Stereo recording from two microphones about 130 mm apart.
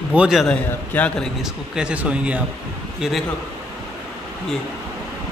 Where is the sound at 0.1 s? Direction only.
5° right (ahead or behind).